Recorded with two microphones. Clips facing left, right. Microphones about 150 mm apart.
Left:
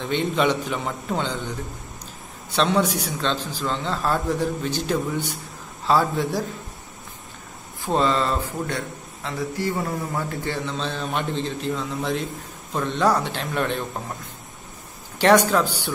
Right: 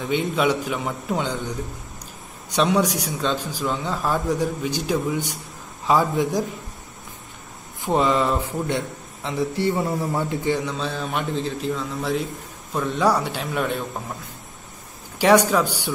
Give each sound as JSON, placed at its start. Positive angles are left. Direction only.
{"t": 0.0, "sound": "a man's voice", "side_deg": -10}
{"t": 2.5, "sound": "a man's voice", "side_deg": -10}
{"t": 7.8, "sound": "a man's voice", "side_deg": -15}
{"t": 10.4, "sound": "a man's voice", "side_deg": -15}
{"t": 15.1, "sound": "a man's voice", "side_deg": -10}